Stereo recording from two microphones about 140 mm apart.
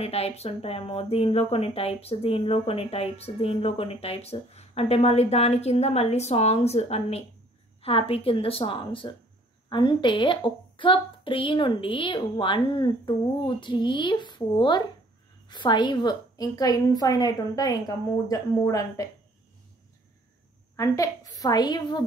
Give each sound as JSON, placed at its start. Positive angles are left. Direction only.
{"t": 0.0, "sound": "a woman's voice", "side_deg": 45}
{"t": 20.7, "sound": "a woman's voice", "side_deg": 20}